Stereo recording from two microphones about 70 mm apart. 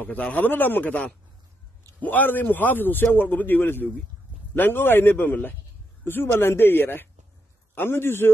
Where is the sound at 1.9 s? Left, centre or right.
Left.